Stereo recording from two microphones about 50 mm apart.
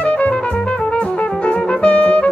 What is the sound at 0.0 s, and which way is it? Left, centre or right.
Music, left.